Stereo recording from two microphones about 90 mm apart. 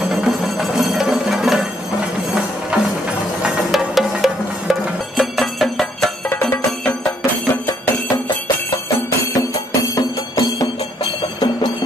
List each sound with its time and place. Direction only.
0.1 s music: 5° right (ahead or behind)
3.4 s music: 5° right (ahead or behind)
9.9 s music: 40° left (ahead or behind)